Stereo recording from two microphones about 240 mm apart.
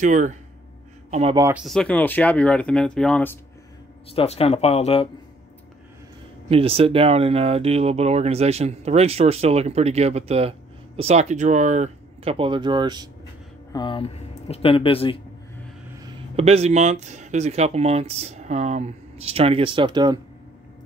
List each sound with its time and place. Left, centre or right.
0.0 s speech: right
1.4 s speech: centre
4.1 s speech: left
6.5 s speech: right
13.7 s speech: centre
16.3 s speech: right